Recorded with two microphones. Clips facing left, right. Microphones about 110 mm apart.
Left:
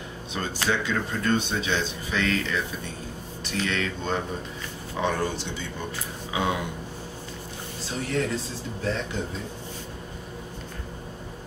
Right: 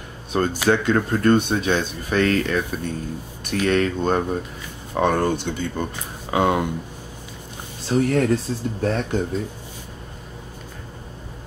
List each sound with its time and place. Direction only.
0.3 s speech: 50° right (ahead or behind)
8.0 s speech: 50° right (ahead or behind)